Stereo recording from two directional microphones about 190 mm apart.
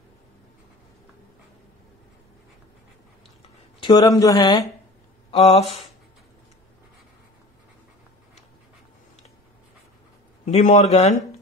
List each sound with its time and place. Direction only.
3.8 s speech: 20° left (ahead or behind)
5.3 s a man's voice: 30° left (ahead or behind)
10.4 s a man's voice: 35° left (ahead or behind)